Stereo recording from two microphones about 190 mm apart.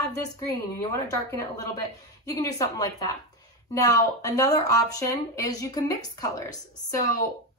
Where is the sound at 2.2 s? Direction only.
20° left (ahead or behind).